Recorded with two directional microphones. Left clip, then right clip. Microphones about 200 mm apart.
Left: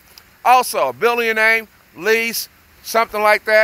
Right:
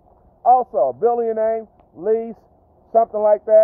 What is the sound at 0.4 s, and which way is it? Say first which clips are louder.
Speech: left 1 dB; 35° left (ahead or behind).